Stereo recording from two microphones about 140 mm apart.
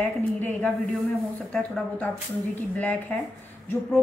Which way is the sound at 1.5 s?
5° left (ahead or behind).